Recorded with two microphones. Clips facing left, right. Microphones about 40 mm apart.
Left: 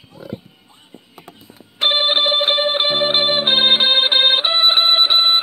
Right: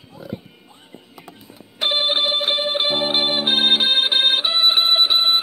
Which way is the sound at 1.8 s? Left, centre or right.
Left.